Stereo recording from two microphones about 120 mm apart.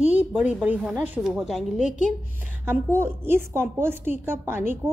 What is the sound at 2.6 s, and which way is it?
A woman's voice, 20° right (ahead or behind).